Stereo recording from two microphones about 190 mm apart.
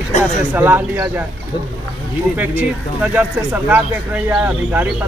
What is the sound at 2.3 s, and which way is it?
Speech, 10° right (ahead or behind).